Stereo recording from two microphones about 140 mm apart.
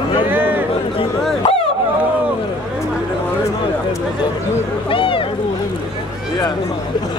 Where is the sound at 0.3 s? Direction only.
15° right (ahead or behind).